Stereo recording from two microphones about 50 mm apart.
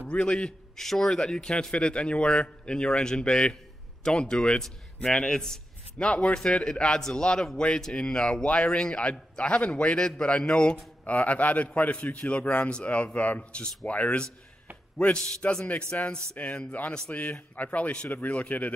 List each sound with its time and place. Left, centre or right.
0.1 s a man's voice: centre
15.9 s a man's voice: left